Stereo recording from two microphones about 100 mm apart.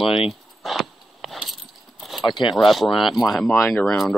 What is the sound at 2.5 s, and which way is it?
Speech, centre (ahead or behind).